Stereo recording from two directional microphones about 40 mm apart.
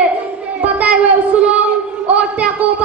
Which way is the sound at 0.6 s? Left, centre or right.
Right.